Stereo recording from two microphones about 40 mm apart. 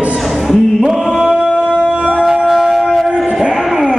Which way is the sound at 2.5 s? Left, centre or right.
Centre.